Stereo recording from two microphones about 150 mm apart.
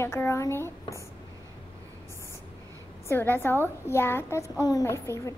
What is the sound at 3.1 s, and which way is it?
A woman's voice, 15° left (ahead or behind).